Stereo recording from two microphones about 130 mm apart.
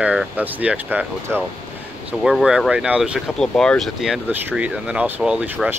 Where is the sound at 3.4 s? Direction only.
5° left (ahead or behind).